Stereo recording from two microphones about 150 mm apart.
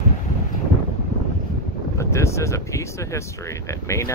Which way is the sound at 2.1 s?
20° left (ahead or behind).